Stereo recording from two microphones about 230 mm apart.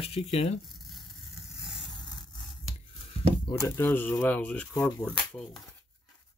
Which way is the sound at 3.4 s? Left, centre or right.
Centre.